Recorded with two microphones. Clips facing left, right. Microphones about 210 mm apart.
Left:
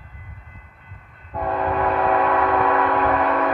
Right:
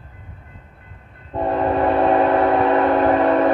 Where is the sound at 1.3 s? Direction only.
30° right (ahead or behind).